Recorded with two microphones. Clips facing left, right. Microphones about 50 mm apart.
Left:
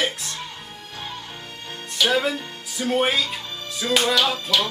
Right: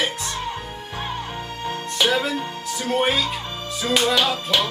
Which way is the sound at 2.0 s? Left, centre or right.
Centre.